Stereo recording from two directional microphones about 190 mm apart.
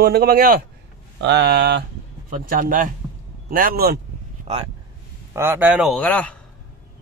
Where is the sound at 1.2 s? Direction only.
65° right (ahead or behind).